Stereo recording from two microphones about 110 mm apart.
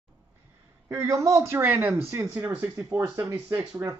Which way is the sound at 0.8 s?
25° right (ahead or behind).